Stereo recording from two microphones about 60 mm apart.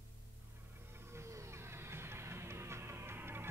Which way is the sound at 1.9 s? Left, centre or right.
Right.